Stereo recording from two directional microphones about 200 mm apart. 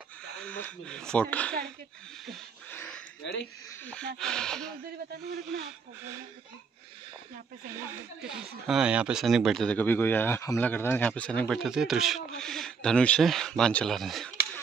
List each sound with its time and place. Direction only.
0.4 s speech: 5° left (ahead or behind)
2.2 s a sound: 5° left (ahead or behind)
3.2 s speech: 65° left (ahead or behind)
3.8 s speech: 5° left (ahead or behind)
8.3 s speech: 5° right (ahead or behind)